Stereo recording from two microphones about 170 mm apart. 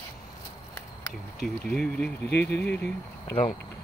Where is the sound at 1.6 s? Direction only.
5° left (ahead or behind).